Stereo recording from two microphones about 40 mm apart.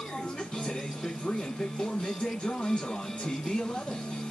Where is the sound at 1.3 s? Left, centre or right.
Centre.